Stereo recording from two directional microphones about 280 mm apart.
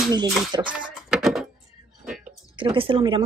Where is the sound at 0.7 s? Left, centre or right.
Centre.